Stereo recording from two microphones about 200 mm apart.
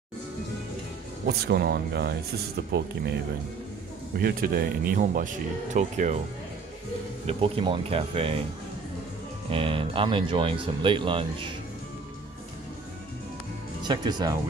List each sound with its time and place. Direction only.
1.2 s speech: 55° right (ahead or behind)
4.2 s speech: 50° right (ahead or behind)
7.2 s speech: 30° right (ahead or behind)
9.5 s speech: 25° right (ahead or behind)
13.8 s speech: 20° right (ahead or behind)